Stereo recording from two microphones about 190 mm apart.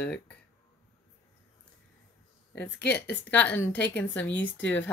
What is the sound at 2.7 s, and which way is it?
Speech, 60° left (ahead or behind).